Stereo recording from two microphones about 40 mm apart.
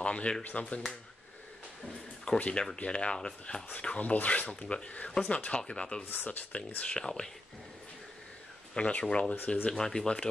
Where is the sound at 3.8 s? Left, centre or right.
Left.